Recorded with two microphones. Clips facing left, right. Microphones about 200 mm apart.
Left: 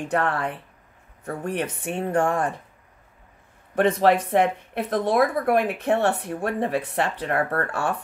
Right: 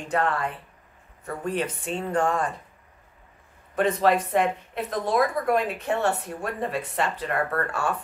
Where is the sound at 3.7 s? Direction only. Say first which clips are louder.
Left 3 dB; 65° left (ahead or behind).